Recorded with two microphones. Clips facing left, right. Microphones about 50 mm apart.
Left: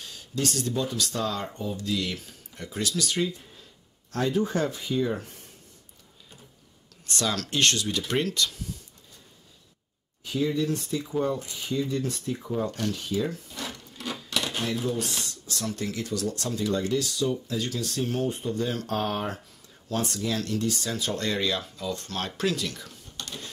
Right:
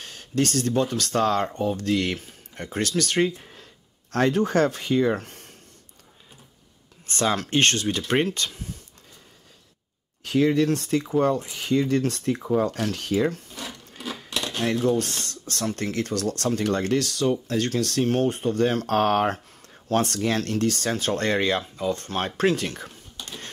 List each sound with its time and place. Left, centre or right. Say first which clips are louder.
0.0 s speech: right 5 dB; right
7.1 s speech: right 5 dB; right
10.2 s speech: right 6 dB; right
14.6 s speech: right 10 dB; right
23.2 s a sound: even; centre